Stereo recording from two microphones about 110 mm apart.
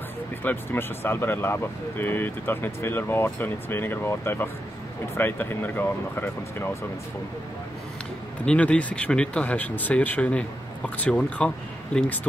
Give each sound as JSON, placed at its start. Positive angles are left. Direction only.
{"t": 0.4, "sound": "speech", "side_deg": 20}
{"t": 8.5, "sound": "speech", "side_deg": 10}